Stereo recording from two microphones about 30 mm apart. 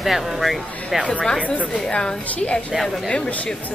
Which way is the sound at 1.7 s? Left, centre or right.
Left.